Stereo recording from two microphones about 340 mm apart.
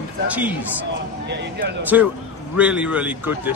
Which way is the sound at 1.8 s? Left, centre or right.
Centre.